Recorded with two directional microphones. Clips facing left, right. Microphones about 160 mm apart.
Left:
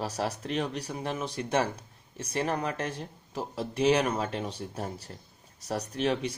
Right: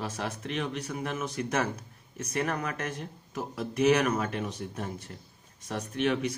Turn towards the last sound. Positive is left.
turn(degrees=35)  # may be behind; listen again after turning